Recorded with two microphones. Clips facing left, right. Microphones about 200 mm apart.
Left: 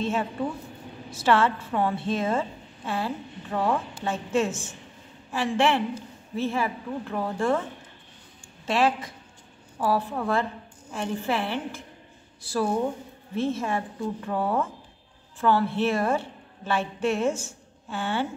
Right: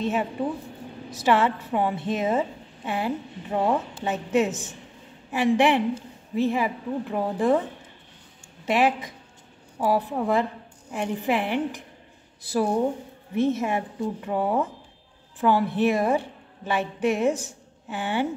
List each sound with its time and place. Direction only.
0.0 s a woman's voice: 15° right (ahead or behind)
8.6 s a woman's voice: 15° right (ahead or behind)